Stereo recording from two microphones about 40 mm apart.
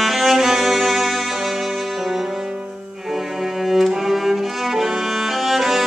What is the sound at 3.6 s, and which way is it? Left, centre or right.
Music, centre.